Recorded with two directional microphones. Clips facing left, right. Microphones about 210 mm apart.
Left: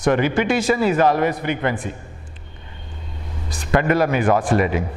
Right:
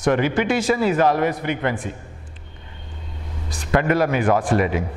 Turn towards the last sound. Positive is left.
turn(degrees=15)  # may be behind; listen again after turning